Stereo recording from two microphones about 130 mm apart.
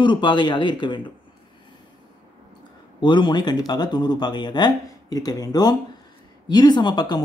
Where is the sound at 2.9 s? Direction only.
35° left (ahead or behind).